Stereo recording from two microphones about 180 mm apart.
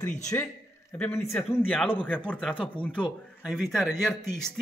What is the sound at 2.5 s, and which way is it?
Speech, 25° left (ahead or behind).